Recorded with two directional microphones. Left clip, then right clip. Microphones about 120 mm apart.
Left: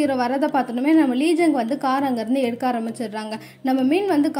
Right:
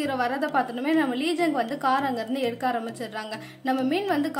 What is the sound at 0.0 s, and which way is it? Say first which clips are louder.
A woman's voice: left 5 dB; 30° left (ahead or behind).